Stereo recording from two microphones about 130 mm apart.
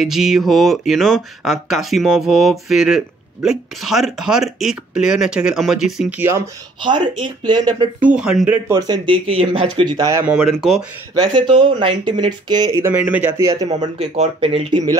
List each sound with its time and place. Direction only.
0.0 s speech: 5° right (ahead or behind)
6.1 s speech: 20° right (ahead or behind)
6.8 s speech: 35° right (ahead or behind)
8.0 s speech: 5° right (ahead or behind)
8.6 s speech: 30° right (ahead or behind)
9.4 s speech: 60° right (ahead or behind)
9.8 s speech: 35° right (ahead or behind)
10.2 s speech: 5° right (ahead or behind)
11.1 s speech: 35° right (ahead or behind)
12.9 s speech: 15° right (ahead or behind)
13.9 s speech: 55° right (ahead or behind)